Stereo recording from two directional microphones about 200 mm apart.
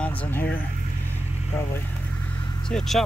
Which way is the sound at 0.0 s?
5° left (ahead or behind).